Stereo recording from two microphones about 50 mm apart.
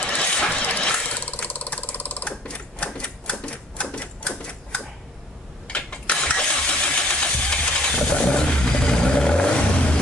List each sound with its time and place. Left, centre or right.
0.0 s engine: left
1.2 s ratchet: left
2.4 s typewriter: left
5.7 s a sound: left
7.1 s vehicle: centre